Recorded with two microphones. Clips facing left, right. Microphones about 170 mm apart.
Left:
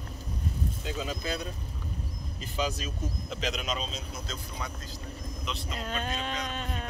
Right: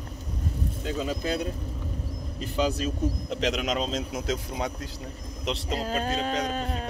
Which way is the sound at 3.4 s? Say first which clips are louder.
Right 6 dB; 75° right (ahead or behind).